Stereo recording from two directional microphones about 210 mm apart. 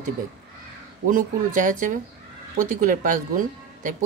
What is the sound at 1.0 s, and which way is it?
Speech, 40° right (ahead or behind).